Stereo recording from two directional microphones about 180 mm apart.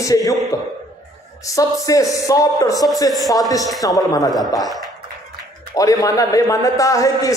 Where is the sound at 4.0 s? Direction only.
20° left (ahead or behind).